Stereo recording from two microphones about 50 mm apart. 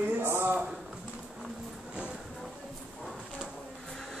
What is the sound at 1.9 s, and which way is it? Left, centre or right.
Music, right.